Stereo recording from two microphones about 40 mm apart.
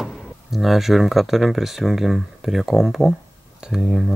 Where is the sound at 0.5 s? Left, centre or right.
Centre.